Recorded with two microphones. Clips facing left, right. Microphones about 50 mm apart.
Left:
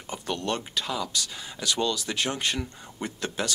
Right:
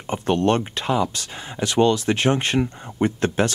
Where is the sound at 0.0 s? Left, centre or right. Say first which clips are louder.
Right 11 dB; right.